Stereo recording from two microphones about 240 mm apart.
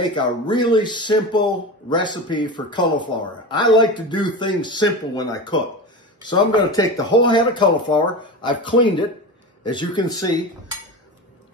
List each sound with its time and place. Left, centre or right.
0.0 s a man's voice: centre